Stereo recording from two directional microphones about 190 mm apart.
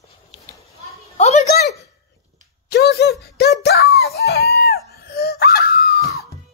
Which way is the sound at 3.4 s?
60° left (ahead or behind).